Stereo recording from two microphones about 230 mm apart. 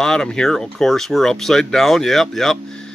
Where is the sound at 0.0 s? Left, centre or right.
Centre.